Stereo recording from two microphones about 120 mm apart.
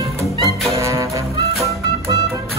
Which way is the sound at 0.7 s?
25° right (ahead or behind).